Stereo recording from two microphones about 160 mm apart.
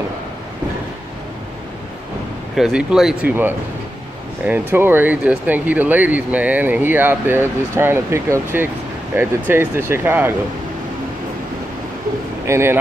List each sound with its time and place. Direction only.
2.5 s speech: 5° right (ahead or behind)
12.4 s speech: 15° right (ahead or behind)